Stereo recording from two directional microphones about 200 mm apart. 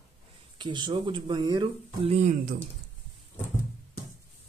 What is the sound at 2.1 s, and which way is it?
Speech, 35° right (ahead or behind).